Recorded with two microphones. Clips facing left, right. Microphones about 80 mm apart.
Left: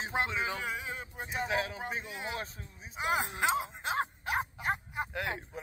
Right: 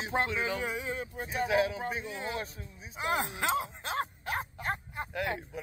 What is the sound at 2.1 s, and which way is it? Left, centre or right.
Speech, centre.